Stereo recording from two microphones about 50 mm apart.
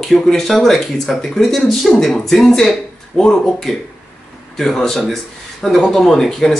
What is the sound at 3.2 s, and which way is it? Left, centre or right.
Speech, centre.